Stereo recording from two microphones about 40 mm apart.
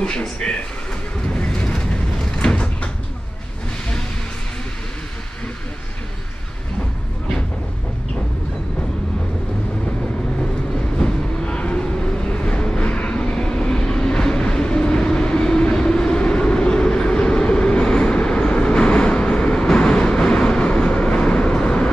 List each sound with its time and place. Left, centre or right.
0.4 s speech: centre
1.3 s vehicle: left
2.5 s door: left
11.0 s vehicle: left